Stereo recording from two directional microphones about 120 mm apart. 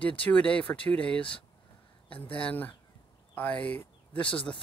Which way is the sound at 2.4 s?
10° left (ahead or behind).